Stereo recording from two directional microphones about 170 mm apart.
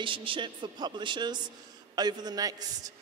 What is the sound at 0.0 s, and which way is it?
A man's voice, 30° right (ahead or behind).